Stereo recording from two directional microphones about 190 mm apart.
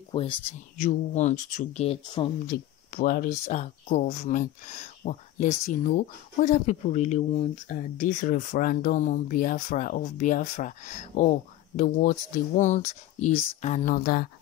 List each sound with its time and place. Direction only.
0.1 s speech: 25° left (ahead or behind)
0.7 s speech: 40° left (ahead or behind)
2.4 s speech: 50° left (ahead or behind)